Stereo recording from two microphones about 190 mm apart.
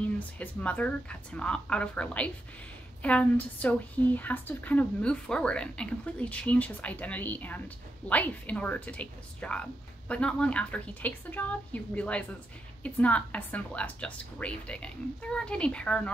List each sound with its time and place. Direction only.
0.2 s a woman's voice: 10° left (ahead or behind)